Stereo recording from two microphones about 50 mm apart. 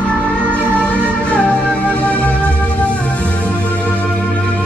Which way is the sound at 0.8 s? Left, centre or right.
Left.